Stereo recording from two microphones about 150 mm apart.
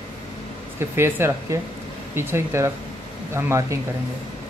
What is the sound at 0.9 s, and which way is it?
Speech, 15° right (ahead or behind).